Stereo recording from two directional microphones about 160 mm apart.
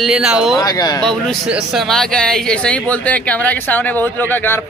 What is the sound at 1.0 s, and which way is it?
Speech, 5° left (ahead or behind).